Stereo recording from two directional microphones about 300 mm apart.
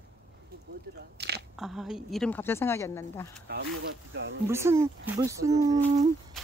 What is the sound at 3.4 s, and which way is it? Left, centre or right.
Speech, right.